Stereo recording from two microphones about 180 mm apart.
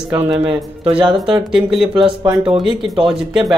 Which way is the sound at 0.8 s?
30° right (ahead or behind).